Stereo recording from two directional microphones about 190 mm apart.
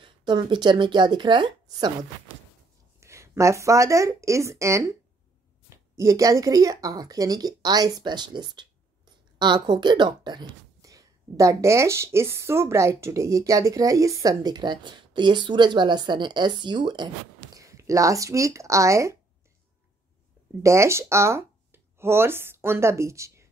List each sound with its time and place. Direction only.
0.0 s a woman's voice: 25° right (ahead or behind)
3.0 s speech: 15° right (ahead or behind)
20.6 s speech: 15° right (ahead or behind)